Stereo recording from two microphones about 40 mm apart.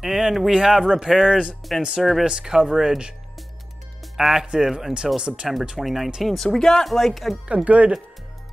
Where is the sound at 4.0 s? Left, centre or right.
Centre.